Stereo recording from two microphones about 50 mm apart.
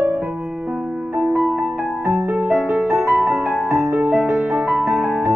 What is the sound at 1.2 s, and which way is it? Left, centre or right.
Music, right.